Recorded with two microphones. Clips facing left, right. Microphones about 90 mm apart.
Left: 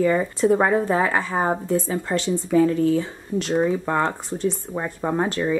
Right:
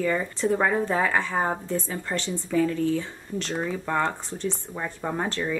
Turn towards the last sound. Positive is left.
turn(degrees=10)  # may be behind; listen again after turning